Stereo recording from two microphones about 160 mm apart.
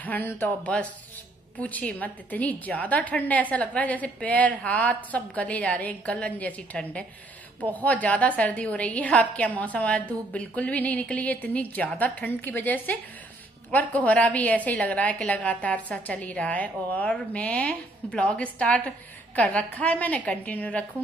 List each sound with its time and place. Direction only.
0.0 s a woman's voice: 10° left (ahead or behind)